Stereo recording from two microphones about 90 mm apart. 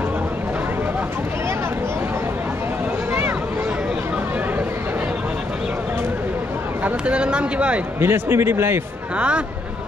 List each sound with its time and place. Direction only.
3.1 s a sound: 25° right (ahead or behind)
6.8 s speech: 15° right (ahead or behind)
8.0 s speech: 25° right (ahead or behind)